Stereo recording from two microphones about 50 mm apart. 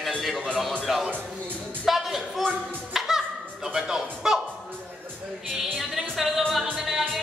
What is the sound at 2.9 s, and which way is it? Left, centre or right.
Music, centre.